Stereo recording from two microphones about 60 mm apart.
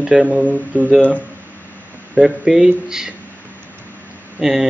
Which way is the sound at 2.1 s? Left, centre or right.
Centre.